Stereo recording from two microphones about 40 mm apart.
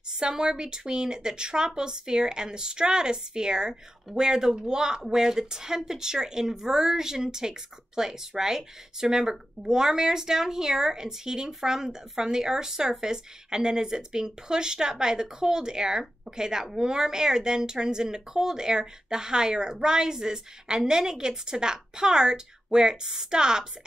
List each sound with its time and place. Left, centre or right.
0.1 s a woman's voice: centre